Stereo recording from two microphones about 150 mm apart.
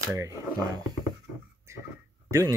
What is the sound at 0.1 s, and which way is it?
Speech, 20° right (ahead or behind).